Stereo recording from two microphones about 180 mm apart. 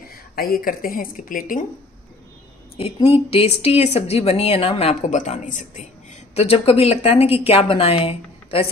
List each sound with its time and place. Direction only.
0.1 s speech: 55° left (ahead or behind)
2.8 s speech: 30° left (ahead or behind)
6.3 s speech: 35° left (ahead or behind)